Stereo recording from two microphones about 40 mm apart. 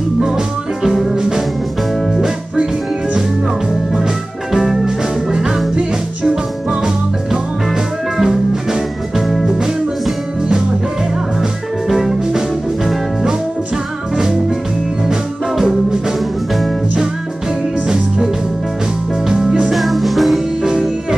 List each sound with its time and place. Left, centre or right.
0.8 s music: centre
2.2 s music: centre
3.9 s music: centre
11.9 s music: centre
19.2 s music: centre
19.7 s music: centre
20.6 s music: centre